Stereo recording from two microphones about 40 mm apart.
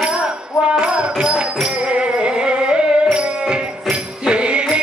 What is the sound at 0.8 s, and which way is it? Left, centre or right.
Music, right.